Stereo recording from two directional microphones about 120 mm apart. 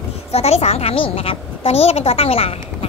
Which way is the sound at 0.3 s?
60° left (ahead or behind).